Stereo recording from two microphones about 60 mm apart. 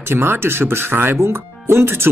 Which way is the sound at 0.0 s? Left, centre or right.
Right.